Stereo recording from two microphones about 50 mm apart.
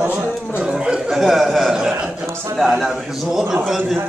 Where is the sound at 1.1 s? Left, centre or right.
Centre.